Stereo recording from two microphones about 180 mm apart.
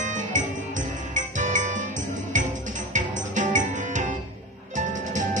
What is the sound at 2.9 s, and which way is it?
Music, 45° right (ahead or behind).